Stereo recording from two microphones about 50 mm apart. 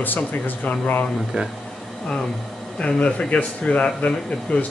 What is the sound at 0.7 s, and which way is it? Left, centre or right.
Speech, left.